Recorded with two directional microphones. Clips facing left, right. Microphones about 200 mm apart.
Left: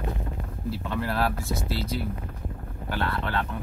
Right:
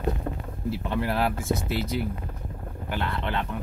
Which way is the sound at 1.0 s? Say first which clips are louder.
Right 1 dB; 20° right (ahead or behind).